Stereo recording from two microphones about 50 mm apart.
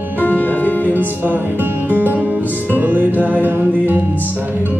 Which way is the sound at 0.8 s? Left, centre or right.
Right.